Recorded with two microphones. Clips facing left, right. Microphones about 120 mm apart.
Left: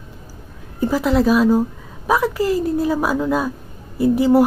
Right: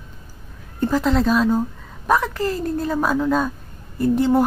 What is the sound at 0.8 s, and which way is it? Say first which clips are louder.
A woman's voice: left 2 dB; 5° left (ahead or behind).